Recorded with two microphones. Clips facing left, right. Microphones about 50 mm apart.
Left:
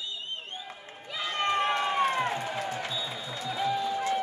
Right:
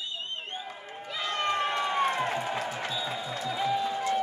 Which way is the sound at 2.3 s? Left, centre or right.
Right.